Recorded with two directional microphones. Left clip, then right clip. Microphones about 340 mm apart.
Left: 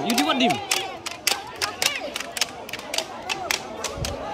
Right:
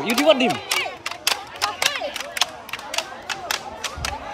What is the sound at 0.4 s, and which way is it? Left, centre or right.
Speech, centre.